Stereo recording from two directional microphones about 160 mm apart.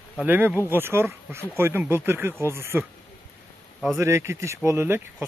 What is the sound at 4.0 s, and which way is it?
Speech, 15° right (ahead or behind).